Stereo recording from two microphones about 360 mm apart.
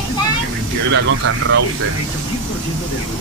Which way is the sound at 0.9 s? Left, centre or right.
Right.